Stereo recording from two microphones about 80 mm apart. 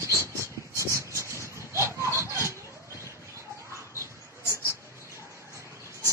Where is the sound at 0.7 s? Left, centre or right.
Right.